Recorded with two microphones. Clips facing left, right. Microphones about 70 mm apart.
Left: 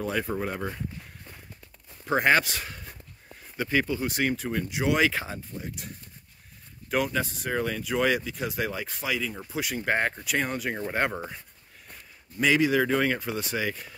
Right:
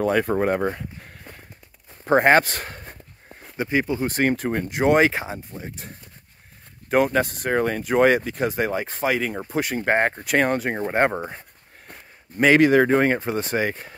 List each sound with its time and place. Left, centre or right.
0.0 s speech: right
2.0 s speech: right
3.5 s speech: right
4.1 s speech: right
5.0 s speech: right
6.9 s speech: right
10.3 s speech: right
10.6 s speech: right
11.9 s speech: right